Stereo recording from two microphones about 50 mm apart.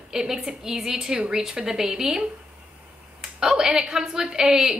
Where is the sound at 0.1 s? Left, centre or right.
Centre.